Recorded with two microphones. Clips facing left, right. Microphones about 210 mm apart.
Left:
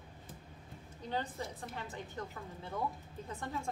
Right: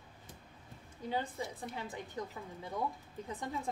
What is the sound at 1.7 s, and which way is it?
Speech, 15° right (ahead or behind).